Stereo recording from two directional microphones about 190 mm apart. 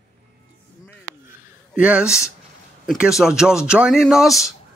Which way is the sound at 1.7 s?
5° right (ahead or behind).